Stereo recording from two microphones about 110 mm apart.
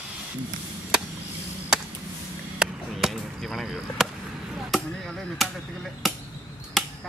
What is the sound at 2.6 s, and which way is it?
Chop, centre (ahead or behind).